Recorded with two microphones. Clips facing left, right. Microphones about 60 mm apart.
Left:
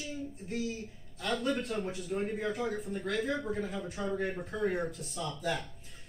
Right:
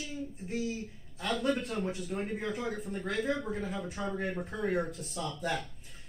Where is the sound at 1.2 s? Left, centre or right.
Centre.